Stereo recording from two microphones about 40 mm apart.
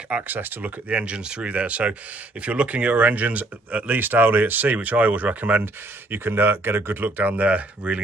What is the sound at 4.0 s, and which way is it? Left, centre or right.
Speech, right.